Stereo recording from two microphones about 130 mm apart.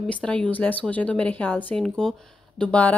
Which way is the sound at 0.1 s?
10° left (ahead or behind).